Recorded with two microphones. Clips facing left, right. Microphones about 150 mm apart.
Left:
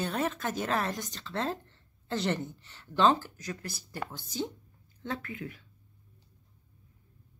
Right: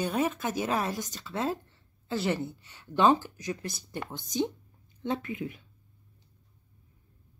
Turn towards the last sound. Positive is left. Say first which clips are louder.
# right 5 dB
turn(degrees=-20)  # may be behind; listen again after turning